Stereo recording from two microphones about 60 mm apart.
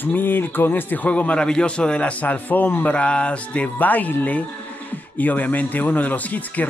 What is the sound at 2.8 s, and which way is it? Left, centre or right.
Speech, left.